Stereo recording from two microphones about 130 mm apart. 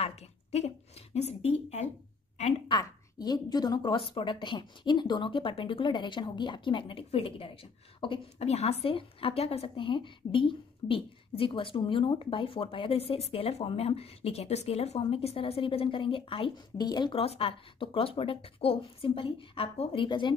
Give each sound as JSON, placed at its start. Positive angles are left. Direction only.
{"t": 0.0, "sound": "a woman's voice", "side_deg": 55}
{"t": 2.7, "sound": "a woman's voice", "side_deg": 30}
{"t": 17.2, "sound": "a woman's voice", "side_deg": 45}